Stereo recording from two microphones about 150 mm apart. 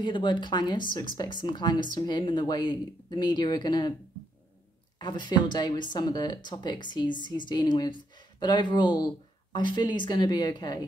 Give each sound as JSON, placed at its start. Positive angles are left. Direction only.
{"t": 0.0, "sound": "a woman's voice", "side_deg": 30}
{"t": 4.9, "sound": "a woman's voice", "side_deg": 30}